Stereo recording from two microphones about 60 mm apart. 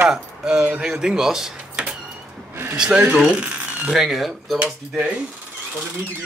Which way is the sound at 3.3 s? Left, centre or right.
Centre.